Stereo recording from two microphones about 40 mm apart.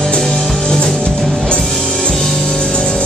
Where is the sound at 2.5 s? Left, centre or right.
Centre.